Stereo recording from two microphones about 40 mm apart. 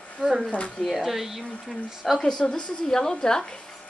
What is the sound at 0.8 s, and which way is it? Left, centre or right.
Speech, centre.